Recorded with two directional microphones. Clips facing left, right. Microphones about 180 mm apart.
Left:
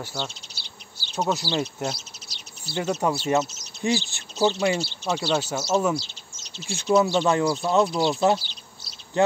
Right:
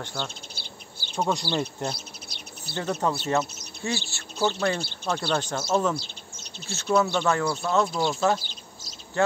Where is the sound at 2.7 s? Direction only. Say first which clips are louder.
Left 4 dB; 55° right (ahead or behind).